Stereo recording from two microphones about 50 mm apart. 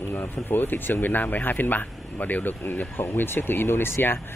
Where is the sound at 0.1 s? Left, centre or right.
Left.